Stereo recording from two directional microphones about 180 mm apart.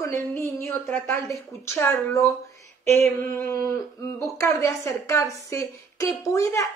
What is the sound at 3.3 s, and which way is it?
A woman's voice, 15° left (ahead or behind).